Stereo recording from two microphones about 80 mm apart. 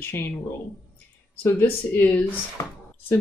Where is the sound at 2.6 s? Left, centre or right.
Left.